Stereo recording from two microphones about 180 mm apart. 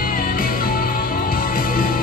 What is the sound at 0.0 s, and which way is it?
Music, 50° left (ahead or behind).